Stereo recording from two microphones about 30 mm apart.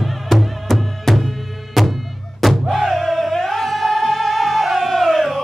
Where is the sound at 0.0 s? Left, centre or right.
Centre.